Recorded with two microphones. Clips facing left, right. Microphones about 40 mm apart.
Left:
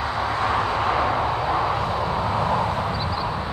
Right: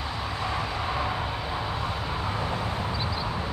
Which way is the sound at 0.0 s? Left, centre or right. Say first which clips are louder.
Left 8 dB; left.